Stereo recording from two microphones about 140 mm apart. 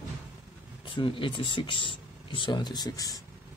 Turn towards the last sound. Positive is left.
turn(degrees=25)  # may be behind; listen again after turning